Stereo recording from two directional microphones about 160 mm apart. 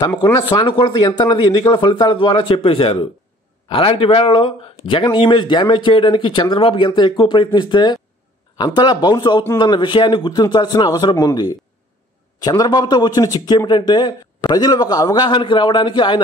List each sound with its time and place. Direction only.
0.2 s a man's voice: 25° left (ahead or behind)